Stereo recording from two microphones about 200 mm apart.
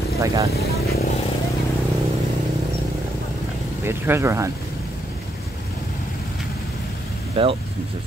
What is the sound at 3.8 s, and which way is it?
Speech, 15° right (ahead or behind).